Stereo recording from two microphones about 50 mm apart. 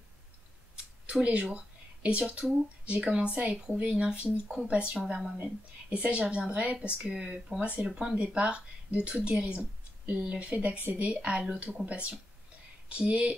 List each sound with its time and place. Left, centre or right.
1.0 s speech: right
6.0 s speech: centre
7.9 s speech: centre
8.2 s speech: right